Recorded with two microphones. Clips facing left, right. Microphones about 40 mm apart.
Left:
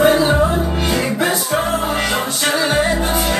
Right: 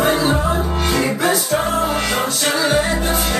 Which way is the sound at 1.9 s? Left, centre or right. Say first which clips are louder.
Even; centre.